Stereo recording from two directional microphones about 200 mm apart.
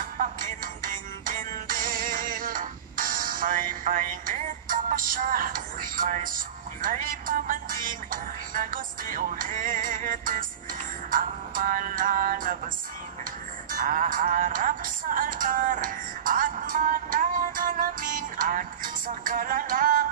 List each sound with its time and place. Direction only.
0.2 s music: 45° right (ahead or behind)